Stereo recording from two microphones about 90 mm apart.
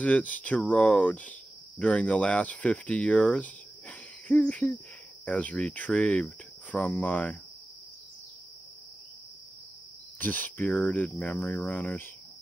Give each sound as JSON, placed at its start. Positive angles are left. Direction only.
{"t": 0.0, "sound": "speech", "side_deg": 15}
{"t": 10.1, "sound": "speech", "side_deg": 20}